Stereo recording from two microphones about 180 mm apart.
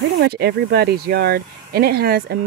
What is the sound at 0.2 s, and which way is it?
Speech, 65° right (ahead or behind).